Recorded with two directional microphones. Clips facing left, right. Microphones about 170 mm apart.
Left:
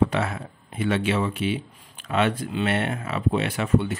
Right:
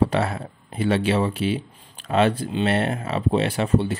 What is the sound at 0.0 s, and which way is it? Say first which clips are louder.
Speech: right 2 dB; 35° right (ahead or behind).